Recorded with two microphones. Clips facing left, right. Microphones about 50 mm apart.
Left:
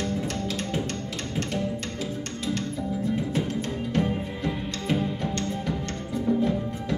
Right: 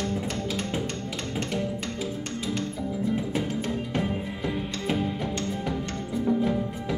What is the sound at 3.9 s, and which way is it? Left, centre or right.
Music, centre.